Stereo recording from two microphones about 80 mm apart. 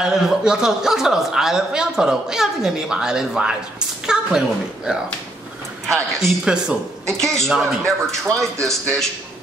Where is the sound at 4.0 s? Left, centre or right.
Centre.